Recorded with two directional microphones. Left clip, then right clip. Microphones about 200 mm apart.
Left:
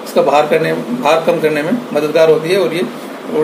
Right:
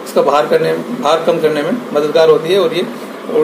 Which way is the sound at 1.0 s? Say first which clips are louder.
Even; 15° left (ahead or behind).